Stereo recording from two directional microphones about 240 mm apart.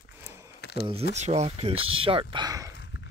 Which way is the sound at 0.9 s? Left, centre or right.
Right.